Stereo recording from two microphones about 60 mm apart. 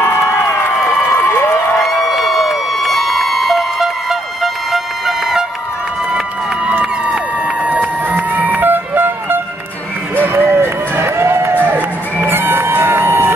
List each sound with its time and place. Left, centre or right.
0.7 s crowd: centre
1.1 s crowd: left
1.8 s crowd: centre
8.1 s music: right
10.1 s run: right
11.5 s crowd: right